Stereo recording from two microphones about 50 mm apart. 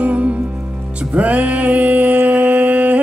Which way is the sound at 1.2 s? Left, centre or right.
Right.